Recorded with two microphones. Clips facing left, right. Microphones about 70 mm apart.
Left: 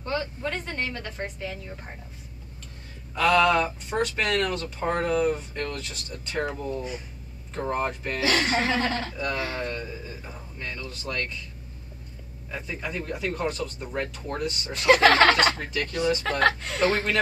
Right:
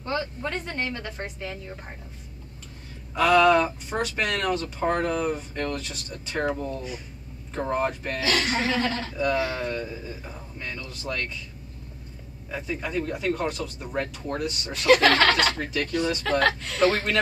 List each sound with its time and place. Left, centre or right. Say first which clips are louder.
0.0 s a woman's voice: even; centre
3.2 s a woman's voice: right 2 dB; centre
7.5 s a woman's voice: right 2 dB; centre
8.2 s speech: left 1 dB; left
9.2 s a woman's voice: right 8 dB; centre
12.4 s a woman's voice: right 2 dB; centre
14.9 s speech: left 1 dB; left
15.5 s a woman's voice: right 3 dB; centre
16.2 s speech: even; left